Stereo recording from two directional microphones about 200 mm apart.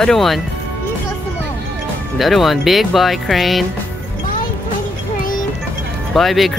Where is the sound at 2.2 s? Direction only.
Centre (ahead or behind).